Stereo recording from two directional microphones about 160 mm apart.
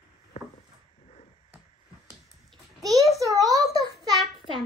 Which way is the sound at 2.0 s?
25° right (ahead or behind).